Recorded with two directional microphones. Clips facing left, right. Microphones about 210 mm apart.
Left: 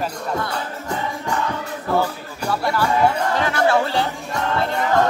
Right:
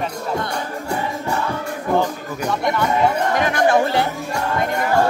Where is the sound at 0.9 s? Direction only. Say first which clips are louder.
Right 1 dB; 10° right (ahead or behind).